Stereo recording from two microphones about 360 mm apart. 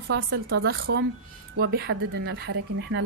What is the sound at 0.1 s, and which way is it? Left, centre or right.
A woman's voice, right.